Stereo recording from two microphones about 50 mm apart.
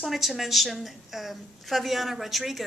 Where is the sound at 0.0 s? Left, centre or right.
Centre.